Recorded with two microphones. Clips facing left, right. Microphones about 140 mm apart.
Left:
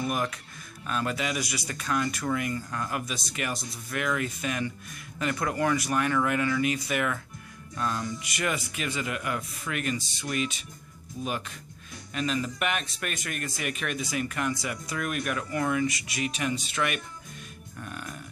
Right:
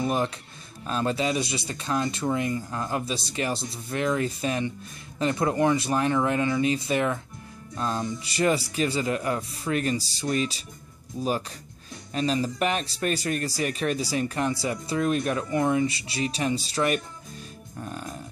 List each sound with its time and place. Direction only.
0.0 s speech: 30° right (ahead or behind)